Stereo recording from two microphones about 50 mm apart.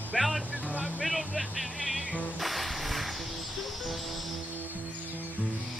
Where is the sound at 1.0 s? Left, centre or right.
Centre.